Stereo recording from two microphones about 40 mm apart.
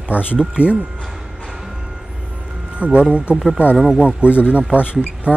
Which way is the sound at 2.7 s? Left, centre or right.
Right.